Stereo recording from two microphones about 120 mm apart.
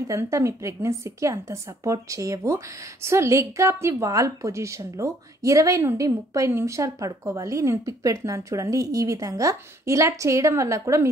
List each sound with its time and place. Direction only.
0.0 s a woman's voice: 25° right (ahead or behind)